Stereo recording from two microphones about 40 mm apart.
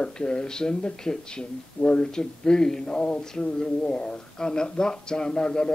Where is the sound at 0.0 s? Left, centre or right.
Left.